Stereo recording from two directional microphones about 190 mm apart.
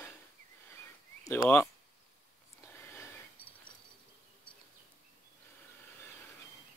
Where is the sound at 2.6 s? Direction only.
10° left (ahead or behind).